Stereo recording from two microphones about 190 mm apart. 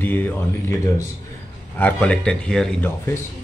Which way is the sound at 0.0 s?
10° left (ahead or behind).